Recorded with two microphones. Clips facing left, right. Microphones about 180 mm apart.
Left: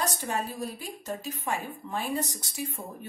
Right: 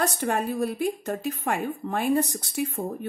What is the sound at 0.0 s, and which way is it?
A woman's voice, 60° right (ahead or behind).